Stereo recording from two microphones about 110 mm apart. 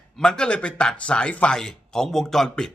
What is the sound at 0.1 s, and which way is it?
A man's voice, 5° left (ahead or behind).